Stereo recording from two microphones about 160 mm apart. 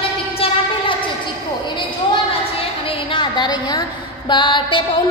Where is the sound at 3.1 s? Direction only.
30° left (ahead or behind).